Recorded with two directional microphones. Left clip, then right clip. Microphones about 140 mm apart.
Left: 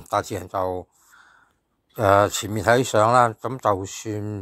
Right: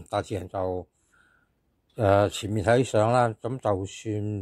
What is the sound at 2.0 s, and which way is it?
Speech, 25° right (ahead or behind).